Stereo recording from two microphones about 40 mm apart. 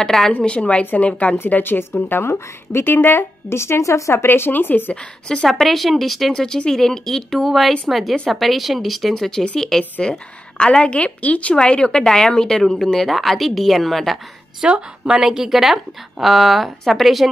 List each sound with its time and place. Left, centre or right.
0.0 s a woman's voice: centre
0.5 s a woman's voice: left
1.6 s a woman's voice: left
2.0 s a woman's voice: left
4.5 s speech: left
5.5 s speech: centre
9.1 s a woman's voice: centre
10.6 s a woman's voice: left
11.5 s a woman's voice: left; by 14.1 s centre
14.7 s a woman's voice: right
15.2 s speech: centre